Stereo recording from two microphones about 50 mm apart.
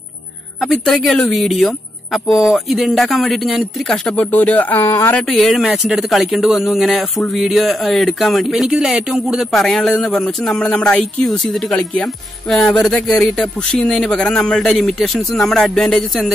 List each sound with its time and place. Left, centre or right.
0.7 s speech: centre
4.1 s speech: left
4.8 s speech: left
5.3 s speech: centre
8.5 s speech: centre
9.5 s a man's voice: centre